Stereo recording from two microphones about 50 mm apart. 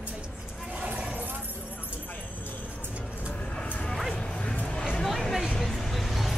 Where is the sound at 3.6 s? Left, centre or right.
Left.